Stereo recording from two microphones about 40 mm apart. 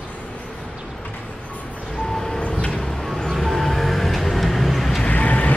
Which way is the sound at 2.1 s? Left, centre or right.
Centre.